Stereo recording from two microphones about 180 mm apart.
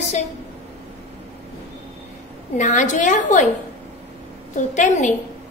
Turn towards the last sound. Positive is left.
turn(degrees=45)  # may be behind; listen again after turning